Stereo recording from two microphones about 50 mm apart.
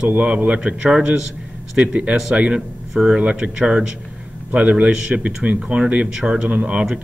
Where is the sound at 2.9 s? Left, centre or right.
Centre.